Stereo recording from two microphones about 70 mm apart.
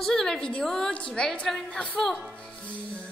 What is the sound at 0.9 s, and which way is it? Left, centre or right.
Child singing, centre.